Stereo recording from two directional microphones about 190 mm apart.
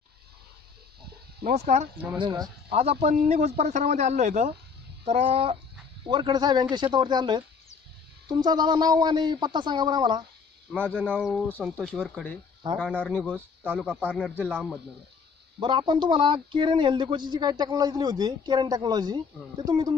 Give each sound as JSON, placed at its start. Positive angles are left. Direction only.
{"t": 1.4, "sound": "speech", "side_deg": -35}
{"t": 2.1, "sound": "speech", "side_deg": -20}
{"t": 10.7, "sound": "speech", "side_deg": 0}
{"t": 15.6, "sound": "speech", "side_deg": -25}